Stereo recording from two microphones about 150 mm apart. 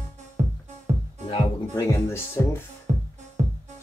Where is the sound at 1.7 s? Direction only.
15° left (ahead or behind).